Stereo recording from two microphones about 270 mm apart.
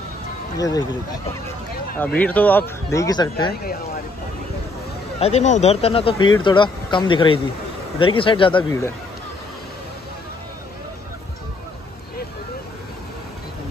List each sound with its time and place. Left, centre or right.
0.6 s speech: centre
2.1 s speech: centre
5.2 s speech: left